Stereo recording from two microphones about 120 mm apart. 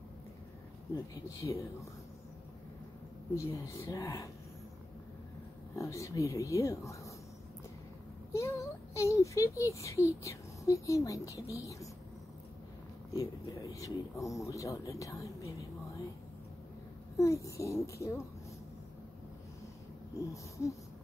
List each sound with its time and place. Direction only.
1.4 s speech: 25° left (ahead or behind)
3.3 s speech: 25° left (ahead or behind)
5.8 s speech: 25° left (ahead or behind)
8.3 s speech: 25° left (ahead or behind)
13.1 s speech: 30° left (ahead or behind)
17.2 s speech: 25° left (ahead or behind)
20.2 s speech: 25° left (ahead or behind)